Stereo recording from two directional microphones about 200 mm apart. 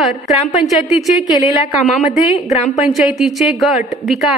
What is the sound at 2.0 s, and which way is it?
Speech, 35° left (ahead or behind).